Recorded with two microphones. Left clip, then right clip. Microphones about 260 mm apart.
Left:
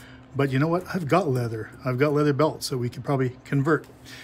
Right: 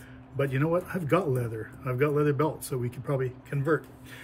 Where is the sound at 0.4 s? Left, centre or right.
Centre.